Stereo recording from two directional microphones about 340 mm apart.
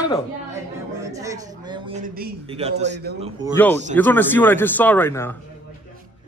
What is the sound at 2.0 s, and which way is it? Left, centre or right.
Speech, right.